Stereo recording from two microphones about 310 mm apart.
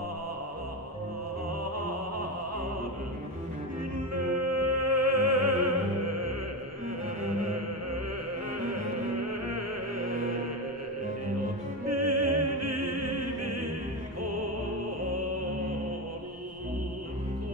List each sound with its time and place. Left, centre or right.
4.3 s music: right
11.9 s opera: right